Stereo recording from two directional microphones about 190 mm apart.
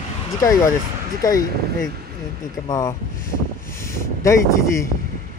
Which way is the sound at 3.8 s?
15° left (ahead or behind).